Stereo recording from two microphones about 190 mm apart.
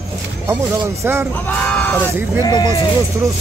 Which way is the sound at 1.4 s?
10° left (ahead or behind).